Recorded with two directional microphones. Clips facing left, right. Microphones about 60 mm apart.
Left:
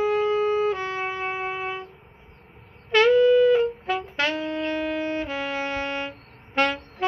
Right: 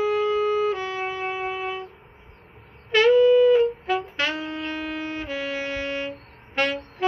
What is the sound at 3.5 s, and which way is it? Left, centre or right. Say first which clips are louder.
Brass instrument: right 2 dB; left.